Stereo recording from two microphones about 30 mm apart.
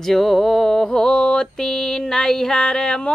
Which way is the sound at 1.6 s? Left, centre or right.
Centre.